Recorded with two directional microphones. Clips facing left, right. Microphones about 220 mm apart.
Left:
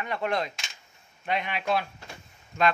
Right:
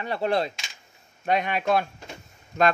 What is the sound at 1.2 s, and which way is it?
Speech, 45° right (ahead or behind).